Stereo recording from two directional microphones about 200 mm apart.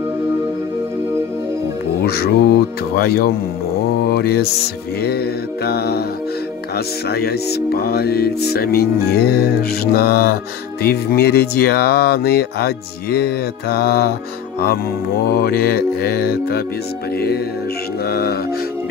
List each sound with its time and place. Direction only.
2.0 s music: 50° left (ahead or behind)
7.1 s music: 50° left (ahead or behind)
18.0 s music: 50° left (ahead or behind)